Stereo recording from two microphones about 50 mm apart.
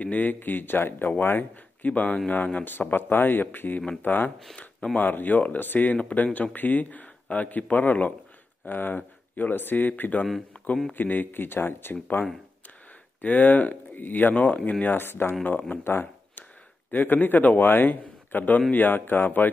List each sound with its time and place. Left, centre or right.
0.0 s speech: left
1.9 s speech: left
5.9 s speech: left
15.0 s speech: left